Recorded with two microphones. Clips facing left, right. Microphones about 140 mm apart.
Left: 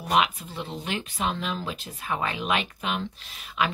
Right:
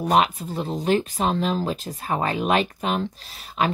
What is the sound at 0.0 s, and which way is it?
Speech, 40° right (ahead or behind).